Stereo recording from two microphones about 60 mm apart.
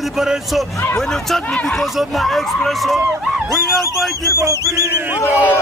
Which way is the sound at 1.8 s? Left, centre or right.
Centre.